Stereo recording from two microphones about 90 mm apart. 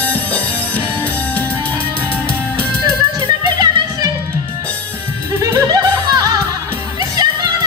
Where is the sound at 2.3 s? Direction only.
15° left (ahead or behind).